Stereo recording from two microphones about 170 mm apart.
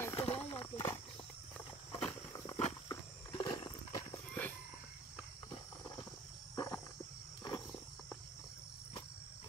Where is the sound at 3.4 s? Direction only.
25° left (ahead or behind).